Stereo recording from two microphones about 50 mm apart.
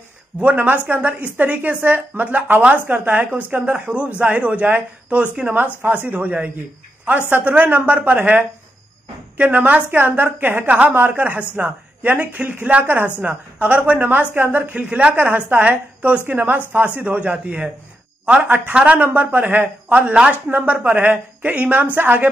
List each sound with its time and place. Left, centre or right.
0.4 s a man's voice: right
6.0 s a woman's voice: right
9.4 s a woman's voice: right
11.5 s a woman's voice: right
16.3 s a woman's voice: right
19.0 s a woman's voice: right